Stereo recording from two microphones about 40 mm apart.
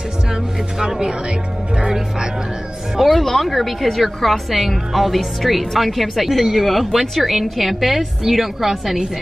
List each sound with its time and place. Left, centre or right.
0.3 s music: centre
3.0 s a woman's voice: centre